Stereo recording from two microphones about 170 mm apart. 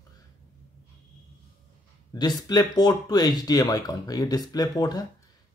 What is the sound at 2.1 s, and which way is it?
Speech, 25° left (ahead or behind).